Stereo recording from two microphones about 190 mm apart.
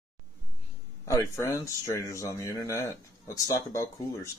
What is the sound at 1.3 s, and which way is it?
Speech, 15° left (ahead or behind).